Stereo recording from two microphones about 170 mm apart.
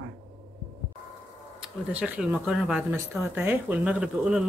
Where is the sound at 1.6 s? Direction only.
10° right (ahead or behind).